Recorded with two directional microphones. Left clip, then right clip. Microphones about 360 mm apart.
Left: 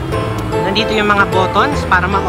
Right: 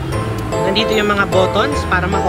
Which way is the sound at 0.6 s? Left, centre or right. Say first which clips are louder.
Left 1 dB; centre.